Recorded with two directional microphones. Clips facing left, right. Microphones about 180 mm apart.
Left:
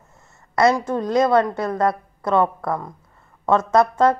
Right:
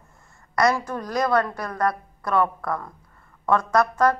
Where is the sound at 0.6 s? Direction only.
25° left (ahead or behind).